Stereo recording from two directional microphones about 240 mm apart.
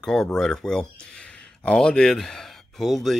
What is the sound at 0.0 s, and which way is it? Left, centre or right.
Speech, centre.